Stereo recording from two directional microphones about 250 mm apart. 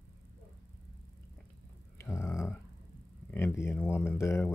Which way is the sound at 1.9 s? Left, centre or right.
Centre.